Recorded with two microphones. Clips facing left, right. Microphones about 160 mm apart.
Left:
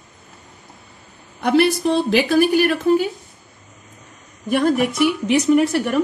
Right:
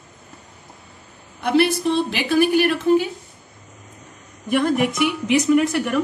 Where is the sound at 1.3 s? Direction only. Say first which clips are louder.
Left 2 dB; 45° left (ahead or behind).